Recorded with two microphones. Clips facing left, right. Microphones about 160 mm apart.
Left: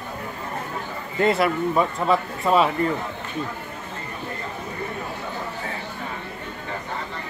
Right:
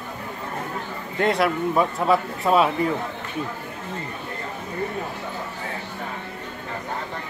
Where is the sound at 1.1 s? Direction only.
Centre (ahead or behind).